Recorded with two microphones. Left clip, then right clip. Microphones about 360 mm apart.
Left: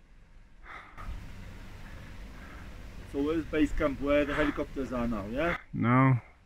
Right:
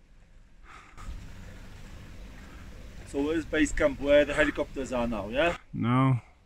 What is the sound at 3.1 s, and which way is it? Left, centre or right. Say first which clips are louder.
Speech: right 2 dB; right.